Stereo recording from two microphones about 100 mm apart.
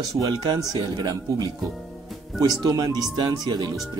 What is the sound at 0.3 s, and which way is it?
Speech, 45° right (ahead or behind).